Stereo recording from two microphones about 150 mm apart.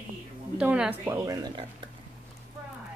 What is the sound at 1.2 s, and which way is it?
Speech, 25° right (ahead or behind).